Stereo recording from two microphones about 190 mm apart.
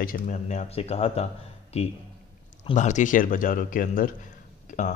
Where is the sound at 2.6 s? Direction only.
40° left (ahead or behind).